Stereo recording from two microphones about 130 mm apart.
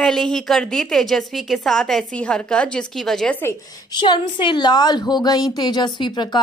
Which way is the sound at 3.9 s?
35° left (ahead or behind).